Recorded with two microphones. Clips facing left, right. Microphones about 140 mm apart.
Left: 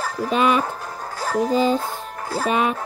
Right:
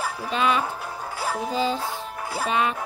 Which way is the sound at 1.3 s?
40° left (ahead or behind).